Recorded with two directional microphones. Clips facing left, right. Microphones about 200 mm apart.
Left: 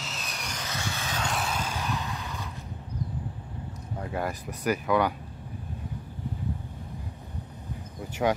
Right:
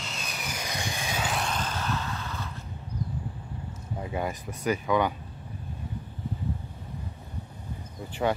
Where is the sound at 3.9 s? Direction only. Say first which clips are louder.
Even; 5° right (ahead or behind).